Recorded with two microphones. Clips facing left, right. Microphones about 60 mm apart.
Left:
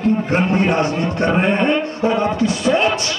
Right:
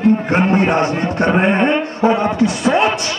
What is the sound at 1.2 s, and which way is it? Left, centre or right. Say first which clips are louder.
Speech: right 3 dB; centre.